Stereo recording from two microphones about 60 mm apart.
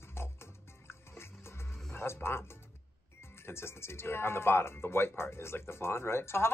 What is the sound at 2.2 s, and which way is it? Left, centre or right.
Speech, left.